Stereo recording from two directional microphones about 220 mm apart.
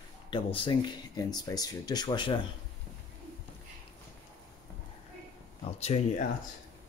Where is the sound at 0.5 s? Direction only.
20° left (ahead or behind).